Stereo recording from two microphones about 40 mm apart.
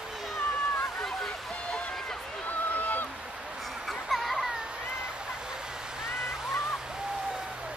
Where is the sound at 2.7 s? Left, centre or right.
Left.